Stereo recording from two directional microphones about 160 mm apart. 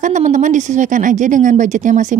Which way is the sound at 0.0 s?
50° right (ahead or behind).